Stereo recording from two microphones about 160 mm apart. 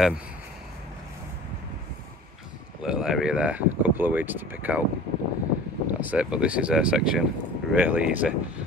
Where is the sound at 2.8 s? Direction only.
5° right (ahead or behind).